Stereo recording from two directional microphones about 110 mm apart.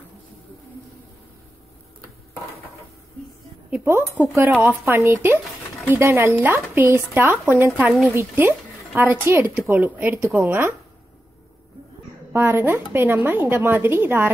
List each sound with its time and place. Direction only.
4.4 s speech: 20° right (ahead or behind)
12.3 s speech: 20° right (ahead or behind)